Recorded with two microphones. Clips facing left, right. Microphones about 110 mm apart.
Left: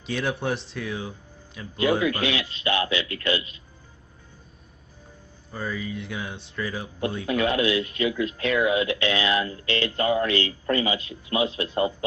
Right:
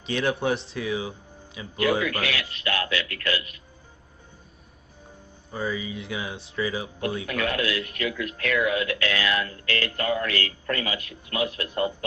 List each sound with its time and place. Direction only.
0.0 s speech: centre (ahead or behind)
1.8 s speech: 25° left (ahead or behind)
5.5 s speech: 5° right (ahead or behind)
7.2 s speech: 25° left (ahead or behind)